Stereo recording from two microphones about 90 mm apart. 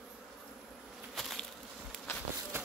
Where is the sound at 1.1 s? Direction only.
Centre (ahead or behind).